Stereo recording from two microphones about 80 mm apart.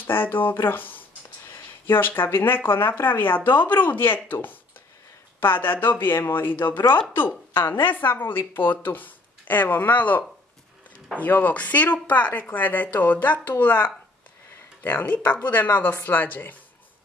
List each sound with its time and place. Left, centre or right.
0.0 s speech: left